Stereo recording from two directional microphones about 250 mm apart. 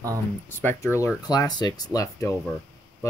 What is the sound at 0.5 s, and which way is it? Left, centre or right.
Speech, centre.